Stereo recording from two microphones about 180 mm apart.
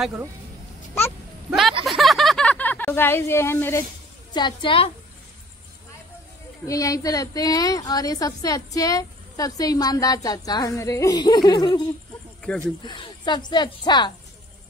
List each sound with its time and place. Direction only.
1.5 s a sound: centre (ahead or behind)
1.9 s speech: centre (ahead or behind)
4.3 s a woman's voice: 25° left (ahead or behind)
6.6 s a woman's voice: 20° left (ahead or behind)
12.4 s speech: 5° left (ahead or behind)
12.8 s a woman's voice: 25° left (ahead or behind)